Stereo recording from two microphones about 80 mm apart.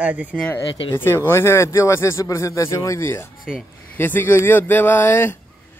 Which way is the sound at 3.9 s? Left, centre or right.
Left.